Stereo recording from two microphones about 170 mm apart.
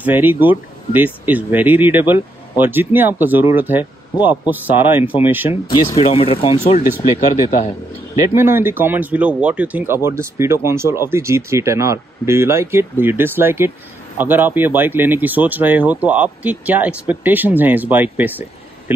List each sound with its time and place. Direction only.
0.0 s speech: 10° right (ahead or behind)
5.7 s speech: 30° left (ahead or behind)
8.2 s speech: 15° right (ahead or behind)